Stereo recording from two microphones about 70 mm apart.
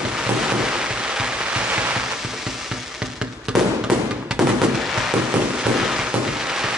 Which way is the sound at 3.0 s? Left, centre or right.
Centre.